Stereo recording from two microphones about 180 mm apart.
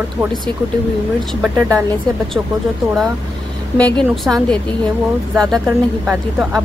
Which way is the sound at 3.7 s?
5° left (ahead or behind).